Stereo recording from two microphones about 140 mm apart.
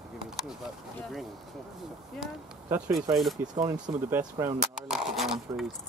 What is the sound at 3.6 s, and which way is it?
Speech, 30° right (ahead or behind).